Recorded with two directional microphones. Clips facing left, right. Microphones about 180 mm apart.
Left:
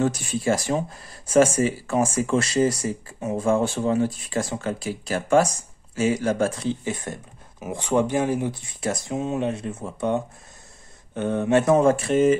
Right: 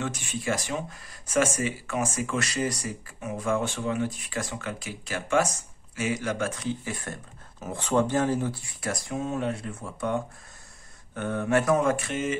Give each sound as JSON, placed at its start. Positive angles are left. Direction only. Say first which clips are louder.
{"t": 0.0, "sound": "speech", "louder": "left 8 dB", "side_deg": 35}